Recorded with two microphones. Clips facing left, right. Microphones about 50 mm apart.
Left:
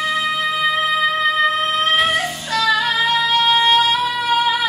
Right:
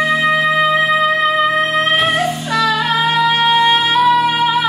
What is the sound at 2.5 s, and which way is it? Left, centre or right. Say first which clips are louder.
Music: right 1 dB; right.